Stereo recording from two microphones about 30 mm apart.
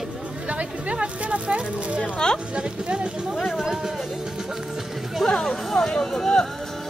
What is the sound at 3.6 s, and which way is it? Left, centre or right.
Speech, right.